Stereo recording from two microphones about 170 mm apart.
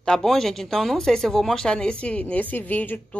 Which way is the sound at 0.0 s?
5° left (ahead or behind).